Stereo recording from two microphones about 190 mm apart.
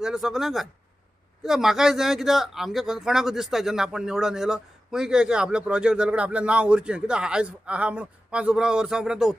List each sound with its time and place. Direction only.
0.0 s a man's voice: centre (ahead or behind)